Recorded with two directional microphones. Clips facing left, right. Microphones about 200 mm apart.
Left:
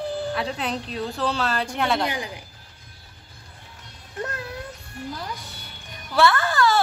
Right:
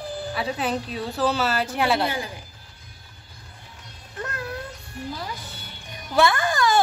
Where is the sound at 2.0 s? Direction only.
15° left (ahead or behind).